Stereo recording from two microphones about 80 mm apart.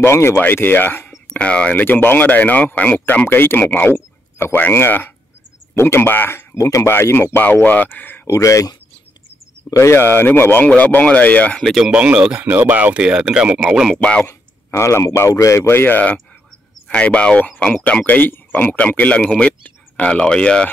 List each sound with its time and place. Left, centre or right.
0.0 s speech: left
1.3 s speech: centre
3.3 s speech: left
8.3 s speech: left
9.8 s speech: left
11.6 s speech: centre
11.9 s speech: centre
12.4 s speech: right
13.9 s speech: centre
14.2 s speech: left; by 19.2 s centre
19.2 s speech: centre